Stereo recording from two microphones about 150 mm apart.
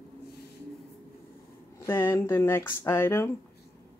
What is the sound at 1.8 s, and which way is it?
Speech, 15° left (ahead or behind).